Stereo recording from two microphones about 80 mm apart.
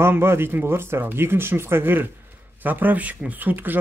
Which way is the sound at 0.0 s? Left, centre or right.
Right.